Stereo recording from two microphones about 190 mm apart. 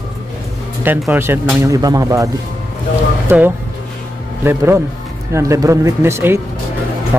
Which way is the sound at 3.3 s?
10° right (ahead or behind).